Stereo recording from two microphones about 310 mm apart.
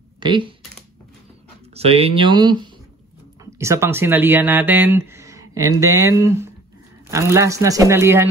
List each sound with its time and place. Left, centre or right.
0.2 s speech: centre
1.7 s speech: centre